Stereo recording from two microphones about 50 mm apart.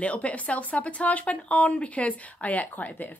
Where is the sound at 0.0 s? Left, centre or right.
Left.